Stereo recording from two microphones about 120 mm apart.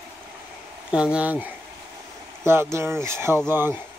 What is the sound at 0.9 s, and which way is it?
Speech, 10° right (ahead or behind).